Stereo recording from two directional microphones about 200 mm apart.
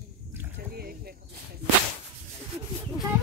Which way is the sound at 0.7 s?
50° right (ahead or behind).